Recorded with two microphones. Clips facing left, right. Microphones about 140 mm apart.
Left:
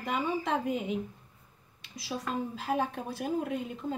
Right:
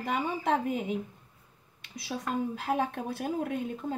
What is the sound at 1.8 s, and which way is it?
A woman's voice, 55° right (ahead or behind).